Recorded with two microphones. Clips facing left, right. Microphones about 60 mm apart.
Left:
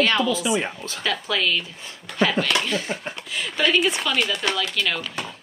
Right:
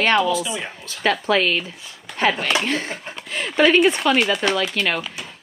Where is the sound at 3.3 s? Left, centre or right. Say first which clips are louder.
Right 6 dB; right.